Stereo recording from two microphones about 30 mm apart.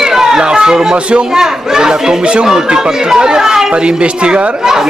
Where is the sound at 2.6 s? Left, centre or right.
Right.